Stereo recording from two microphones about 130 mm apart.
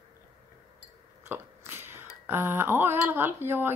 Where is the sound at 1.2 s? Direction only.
15° right (ahead or behind).